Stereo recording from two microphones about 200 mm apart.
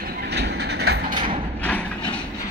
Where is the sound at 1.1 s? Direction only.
25° right (ahead or behind).